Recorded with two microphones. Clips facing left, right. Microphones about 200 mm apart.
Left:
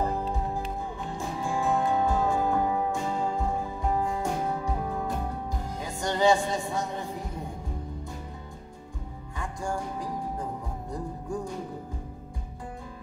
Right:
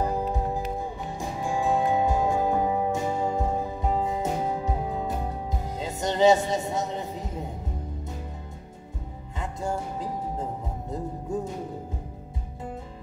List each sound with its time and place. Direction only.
0.0 s music: 15° right (ahead or behind)
9.4 s music: 20° right (ahead or behind)